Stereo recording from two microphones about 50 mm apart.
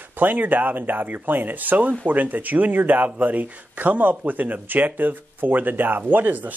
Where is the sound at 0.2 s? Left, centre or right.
Right.